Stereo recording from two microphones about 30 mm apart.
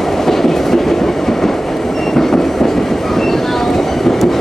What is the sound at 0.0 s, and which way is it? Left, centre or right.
Train, centre.